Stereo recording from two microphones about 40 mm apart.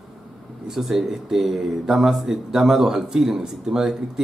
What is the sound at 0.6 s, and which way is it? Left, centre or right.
Speech, centre.